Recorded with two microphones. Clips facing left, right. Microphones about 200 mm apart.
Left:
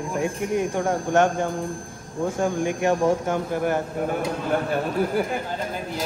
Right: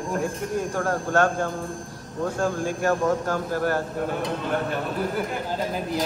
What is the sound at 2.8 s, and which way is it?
Speech, 20° left (ahead or behind).